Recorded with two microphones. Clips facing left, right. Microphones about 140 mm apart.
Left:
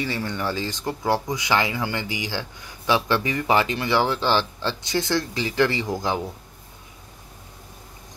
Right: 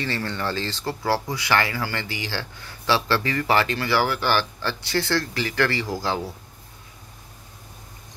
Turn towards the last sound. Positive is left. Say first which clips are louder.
# left 1 dB
turn(degrees=20)  # may be behind; listen again after turning